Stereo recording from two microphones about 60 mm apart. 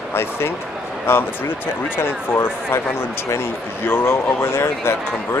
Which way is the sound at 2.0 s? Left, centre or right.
Left.